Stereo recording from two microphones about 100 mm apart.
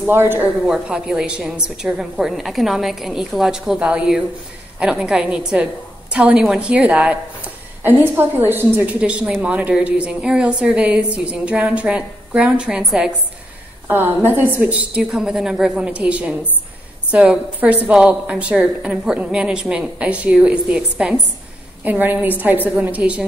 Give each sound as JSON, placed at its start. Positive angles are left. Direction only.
{"t": 0.0, "sound": "a woman's voice", "side_deg": -20}
{"t": 0.6, "sound": "a woman's voice", "side_deg": -10}
{"t": 13.8, "sound": "a woman's voice", "side_deg": -20}